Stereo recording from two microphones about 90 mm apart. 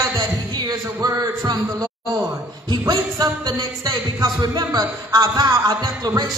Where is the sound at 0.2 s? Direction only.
45° right (ahead or behind).